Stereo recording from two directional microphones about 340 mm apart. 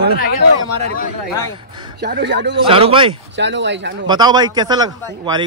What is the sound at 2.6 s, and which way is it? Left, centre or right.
Speech, centre.